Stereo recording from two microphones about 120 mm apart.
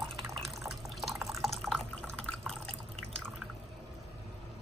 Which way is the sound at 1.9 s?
10° left (ahead or behind).